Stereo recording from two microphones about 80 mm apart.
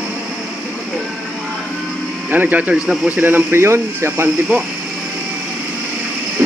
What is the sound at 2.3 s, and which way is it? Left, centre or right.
Speech, right.